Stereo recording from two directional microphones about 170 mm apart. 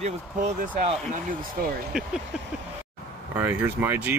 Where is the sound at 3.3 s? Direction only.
10° right (ahead or behind).